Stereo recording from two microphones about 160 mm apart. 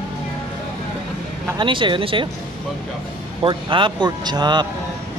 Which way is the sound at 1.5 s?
30° right (ahead or behind).